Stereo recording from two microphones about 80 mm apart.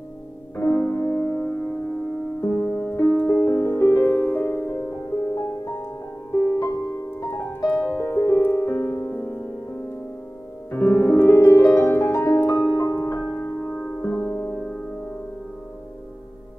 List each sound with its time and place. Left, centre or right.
0.6 s music: left
2.4 s music: left
2.7 s music: centre; by 9.3 s left
10.7 s piano: left
13.2 s music: left
13.7 s music: centre
14.1 s music: left